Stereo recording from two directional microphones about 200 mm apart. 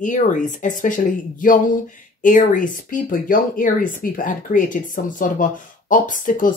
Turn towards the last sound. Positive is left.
turn(degrees=40)  # may be behind; listen again after turning